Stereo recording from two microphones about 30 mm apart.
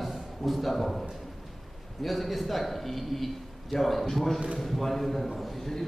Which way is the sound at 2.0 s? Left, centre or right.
Centre.